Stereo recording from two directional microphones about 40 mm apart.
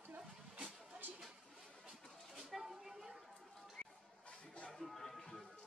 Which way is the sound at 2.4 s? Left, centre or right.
Centre.